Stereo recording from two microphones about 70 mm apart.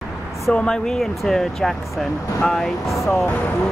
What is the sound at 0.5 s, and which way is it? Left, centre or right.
Speech, centre.